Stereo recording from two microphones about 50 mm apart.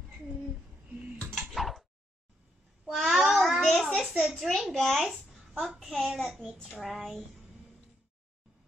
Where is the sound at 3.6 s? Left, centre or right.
Centre.